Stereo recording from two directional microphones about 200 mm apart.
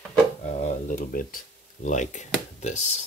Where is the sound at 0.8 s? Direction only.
45° left (ahead or behind).